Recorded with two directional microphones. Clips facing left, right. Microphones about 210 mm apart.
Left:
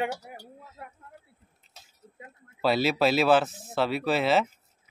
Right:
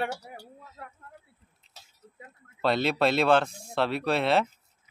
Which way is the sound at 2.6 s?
5° left (ahead or behind).